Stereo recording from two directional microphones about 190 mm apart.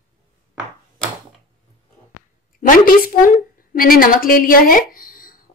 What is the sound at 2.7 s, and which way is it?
A woman's voice, 45° left (ahead or behind).